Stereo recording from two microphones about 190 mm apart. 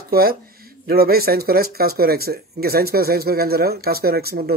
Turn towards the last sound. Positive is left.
turn(degrees=-55)  # may be behind; listen again after turning